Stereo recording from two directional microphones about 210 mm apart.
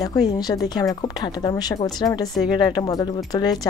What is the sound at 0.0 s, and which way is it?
Speech, 20° left (ahead or behind).